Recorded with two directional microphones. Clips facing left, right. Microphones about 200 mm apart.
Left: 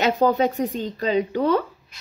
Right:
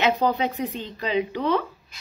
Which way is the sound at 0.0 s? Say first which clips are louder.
Left 3 dB; 45° left (ahead or behind).